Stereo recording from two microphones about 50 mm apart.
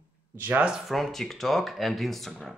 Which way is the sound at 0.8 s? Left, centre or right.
Centre.